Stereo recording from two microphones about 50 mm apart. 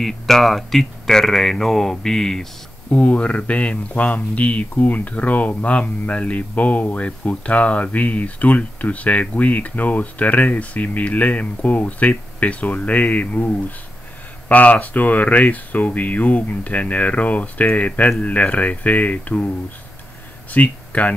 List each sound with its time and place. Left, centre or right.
0.0 s speech: centre
2.9 s speech: left
20.5 s speech: left